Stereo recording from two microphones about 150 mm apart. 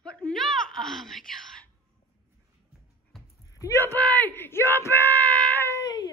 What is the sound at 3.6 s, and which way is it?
Speech, 20° left (ahead or behind).